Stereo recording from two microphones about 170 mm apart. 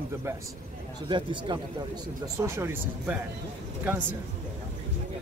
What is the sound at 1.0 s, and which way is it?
Speech, 30° right (ahead or behind).